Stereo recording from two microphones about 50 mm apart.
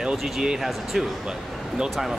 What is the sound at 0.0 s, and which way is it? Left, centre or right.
Speech, centre.